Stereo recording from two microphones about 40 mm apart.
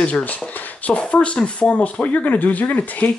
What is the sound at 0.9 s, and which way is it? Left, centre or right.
Speech, left.